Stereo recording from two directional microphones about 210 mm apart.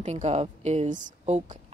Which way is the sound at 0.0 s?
30° right (ahead or behind).